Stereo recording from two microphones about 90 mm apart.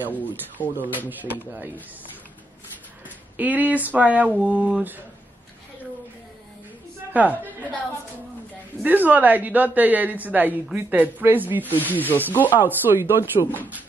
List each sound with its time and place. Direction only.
0.1 s speech: 20° left (ahead or behind)
1.0 s a woman's voice: 20° right (ahead or behind)
3.3 s speech: 20° right (ahead or behind)
7.1 s a woman's voice: 20° right (ahead or behind)
8.8 s a woman's voice: 20° right (ahead or behind)
11.8 s speech: 20° left (ahead or behind)
12.5 s a woman's voice: 25° right (ahead or behind)